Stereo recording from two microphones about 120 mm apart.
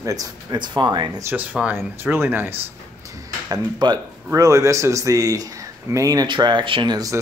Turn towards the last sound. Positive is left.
turn(degrees=-35)  # may be behind; listen again after turning